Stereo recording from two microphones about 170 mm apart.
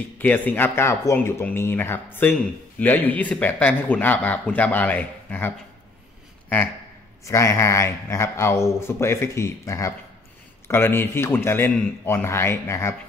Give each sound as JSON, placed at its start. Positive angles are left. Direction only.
{"t": 0.2, "sound": "a man's voice", "side_deg": 10}
{"t": 7.2, "sound": "a man's voice", "side_deg": 20}